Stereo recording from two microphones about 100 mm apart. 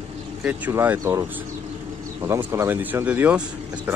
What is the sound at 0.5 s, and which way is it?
Speech, 20° right (ahead or behind).